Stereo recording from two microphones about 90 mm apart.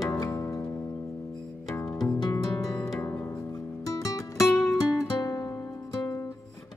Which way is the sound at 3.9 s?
40° left (ahead or behind).